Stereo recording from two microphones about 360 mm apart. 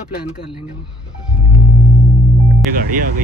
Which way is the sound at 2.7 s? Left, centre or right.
Right.